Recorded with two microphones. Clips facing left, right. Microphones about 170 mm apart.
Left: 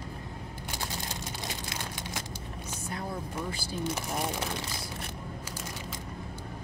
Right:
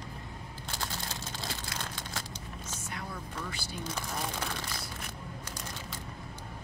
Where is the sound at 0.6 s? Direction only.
15° left (ahead or behind).